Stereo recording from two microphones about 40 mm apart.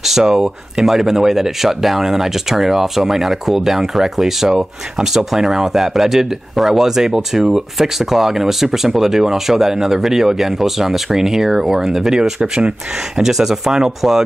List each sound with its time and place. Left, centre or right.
0.0 s speech: centre
13.2 s speech: centre